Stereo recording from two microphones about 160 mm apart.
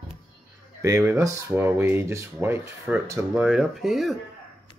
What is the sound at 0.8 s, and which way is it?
Speech, 20° right (ahead or behind).